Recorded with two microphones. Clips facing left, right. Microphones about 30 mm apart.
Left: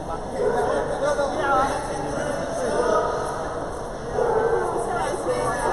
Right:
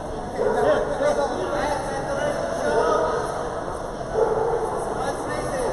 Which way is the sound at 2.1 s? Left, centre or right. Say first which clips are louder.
Right 4 dB; centre.